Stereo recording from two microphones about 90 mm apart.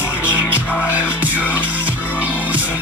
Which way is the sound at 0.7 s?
15° right (ahead or behind).